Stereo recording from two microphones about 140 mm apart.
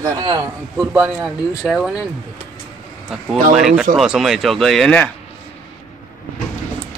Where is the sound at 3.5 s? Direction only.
5° right (ahead or behind).